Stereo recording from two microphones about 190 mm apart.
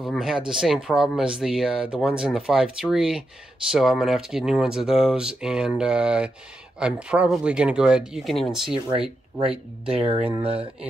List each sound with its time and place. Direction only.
0.0 s speech: centre (ahead or behind)
9.8 s speech: 30° right (ahead or behind)